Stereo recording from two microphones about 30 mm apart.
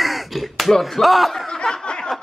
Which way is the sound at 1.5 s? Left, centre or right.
Left.